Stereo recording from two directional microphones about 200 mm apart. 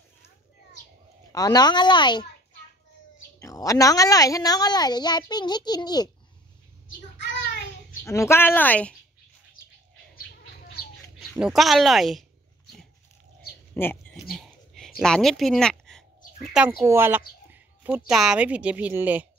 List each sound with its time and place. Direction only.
1.3 s a woman's voice: 20° left (ahead or behind)
3.3 s a woman's voice: 15° left (ahead or behind)
7.2 s child singing: 60° left (ahead or behind)
8.0 s speech: 15° left (ahead or behind)
11.1 s speech: centre (ahead or behind)
13.7 s speech: 10° left (ahead or behind)
14.3 s a sound: centre (ahead or behind)
16.5 s speech: 10° right (ahead or behind)